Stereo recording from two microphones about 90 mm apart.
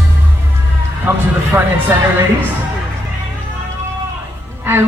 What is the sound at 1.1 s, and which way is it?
Music, 25° right (ahead or behind).